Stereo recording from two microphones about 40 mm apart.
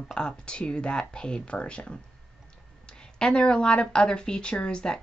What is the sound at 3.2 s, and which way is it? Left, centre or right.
Speech, left.